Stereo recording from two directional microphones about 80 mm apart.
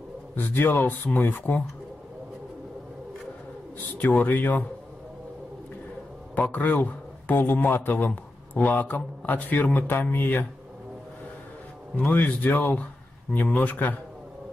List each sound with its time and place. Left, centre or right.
0.4 s speech: left
4.0 s speech: left
6.3 s speech: centre
12.0 s speech: left